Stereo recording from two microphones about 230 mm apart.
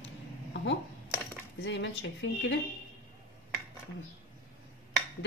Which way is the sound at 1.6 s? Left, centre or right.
Left.